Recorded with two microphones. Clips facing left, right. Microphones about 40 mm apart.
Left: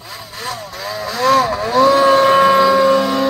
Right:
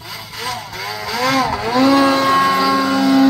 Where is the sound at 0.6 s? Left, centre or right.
Centre.